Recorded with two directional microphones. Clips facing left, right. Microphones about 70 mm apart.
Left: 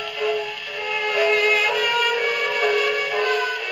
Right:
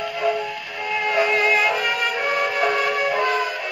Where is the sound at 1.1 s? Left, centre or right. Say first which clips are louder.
Even; right.